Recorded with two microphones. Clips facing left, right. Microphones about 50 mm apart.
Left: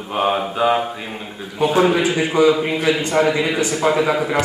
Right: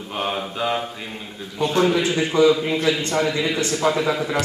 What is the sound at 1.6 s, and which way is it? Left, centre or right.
A man's voice, centre.